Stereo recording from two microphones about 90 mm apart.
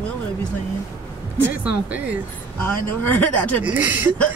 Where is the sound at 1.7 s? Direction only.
15° right (ahead or behind).